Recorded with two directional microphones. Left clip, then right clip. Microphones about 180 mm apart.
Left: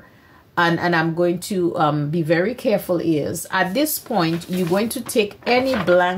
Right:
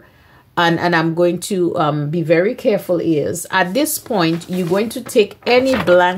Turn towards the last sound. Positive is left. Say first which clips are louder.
# right 4 dB
turn(degrees=-30)  # may be behind; listen again after turning